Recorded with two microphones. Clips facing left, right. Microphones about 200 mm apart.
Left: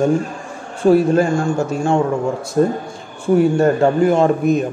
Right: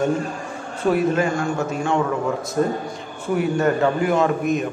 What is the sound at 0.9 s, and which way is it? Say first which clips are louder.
Speech: left 6 dB; 35° left (ahead or behind).